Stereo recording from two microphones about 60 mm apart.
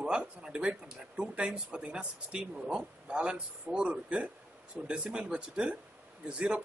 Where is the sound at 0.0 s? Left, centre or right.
Centre.